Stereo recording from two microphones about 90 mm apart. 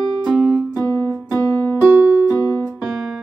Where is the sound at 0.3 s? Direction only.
5° left (ahead or behind).